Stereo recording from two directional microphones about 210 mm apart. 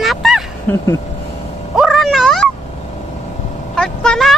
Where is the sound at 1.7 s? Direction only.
Centre (ahead or behind).